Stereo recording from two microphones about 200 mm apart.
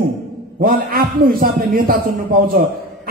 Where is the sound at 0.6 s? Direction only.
45° right (ahead or behind).